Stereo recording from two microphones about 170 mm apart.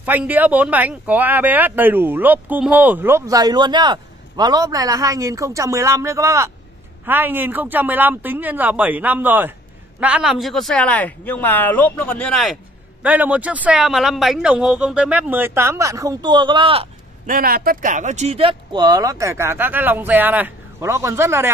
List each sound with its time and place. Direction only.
0.0 s speech: 10° right (ahead or behind)
13.0 s speech: 10° right (ahead or behind); by 16.8 s 30° right (ahead or behind)
17.3 s speech: 60° right (ahead or behind); by 21.5 s 15° right (ahead or behind)